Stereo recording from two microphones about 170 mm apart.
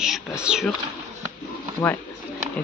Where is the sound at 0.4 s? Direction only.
5° right (ahead or behind).